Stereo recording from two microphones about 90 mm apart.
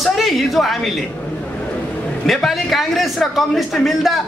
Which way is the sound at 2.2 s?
Centre (ahead or behind).